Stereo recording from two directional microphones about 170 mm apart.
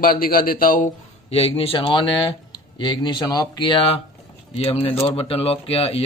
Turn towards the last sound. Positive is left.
turn(degrees=35)  # may be behind; listen again after turning